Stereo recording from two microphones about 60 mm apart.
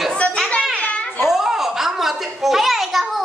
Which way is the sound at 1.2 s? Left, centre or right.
Centre.